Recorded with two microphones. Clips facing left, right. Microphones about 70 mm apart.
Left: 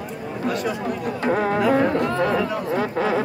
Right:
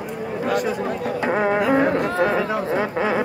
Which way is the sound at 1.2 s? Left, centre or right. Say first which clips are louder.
Right 1 dB; right.